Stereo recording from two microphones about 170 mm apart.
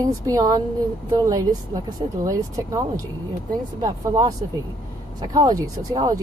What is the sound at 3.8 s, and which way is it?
Speech, 20° right (ahead or behind).